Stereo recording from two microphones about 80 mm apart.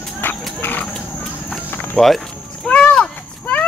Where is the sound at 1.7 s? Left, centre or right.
Left.